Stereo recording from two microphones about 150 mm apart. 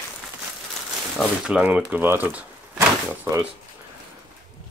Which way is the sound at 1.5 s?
10° right (ahead or behind).